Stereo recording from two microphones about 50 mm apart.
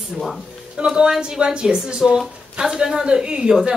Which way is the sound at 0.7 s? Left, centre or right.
Centre.